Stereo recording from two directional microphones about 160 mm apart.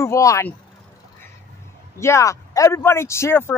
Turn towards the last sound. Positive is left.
turn(degrees=15)  # may be behind; listen again after turning